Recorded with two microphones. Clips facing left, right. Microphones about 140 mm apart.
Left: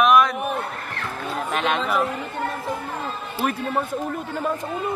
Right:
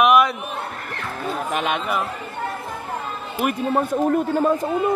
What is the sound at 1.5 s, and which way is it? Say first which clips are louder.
Speech: left 2 dB; 5° right (ahead or behind).